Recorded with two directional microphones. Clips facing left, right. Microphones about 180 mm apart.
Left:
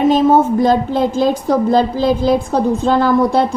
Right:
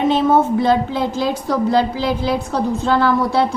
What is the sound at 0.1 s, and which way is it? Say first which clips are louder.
A woman's voice: left 3 dB; 40° left (ahead or behind).